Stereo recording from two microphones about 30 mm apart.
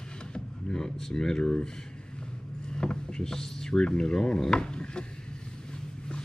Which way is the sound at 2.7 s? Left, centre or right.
Left.